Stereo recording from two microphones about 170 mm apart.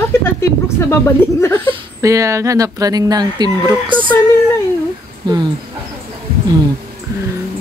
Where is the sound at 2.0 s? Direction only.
20° right (ahead or behind).